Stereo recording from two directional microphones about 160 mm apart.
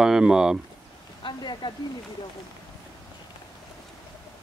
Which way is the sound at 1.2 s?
30° left (ahead or behind).